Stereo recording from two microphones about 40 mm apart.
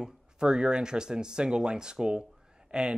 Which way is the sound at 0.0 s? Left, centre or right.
Right.